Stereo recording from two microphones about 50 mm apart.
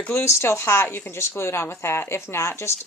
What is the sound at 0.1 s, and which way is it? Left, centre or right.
Speech, left.